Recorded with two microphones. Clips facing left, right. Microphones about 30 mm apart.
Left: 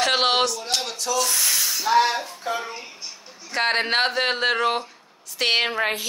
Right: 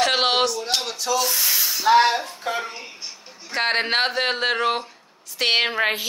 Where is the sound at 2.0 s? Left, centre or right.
Right.